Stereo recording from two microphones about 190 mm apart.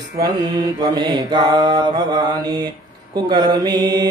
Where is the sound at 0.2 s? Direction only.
20° right (ahead or behind).